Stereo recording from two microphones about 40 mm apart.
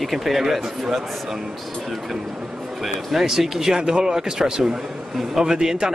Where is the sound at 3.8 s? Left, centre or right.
Right.